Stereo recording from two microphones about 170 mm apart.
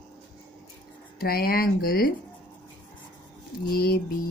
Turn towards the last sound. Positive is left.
turn(degrees=65)  # may be behind; listen again after turning